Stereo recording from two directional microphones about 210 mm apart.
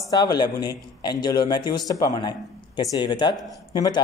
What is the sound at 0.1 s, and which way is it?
Speech, 20° left (ahead or behind).